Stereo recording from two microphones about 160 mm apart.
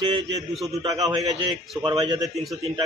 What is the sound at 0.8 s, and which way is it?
A man's voice, 25° right (ahead or behind).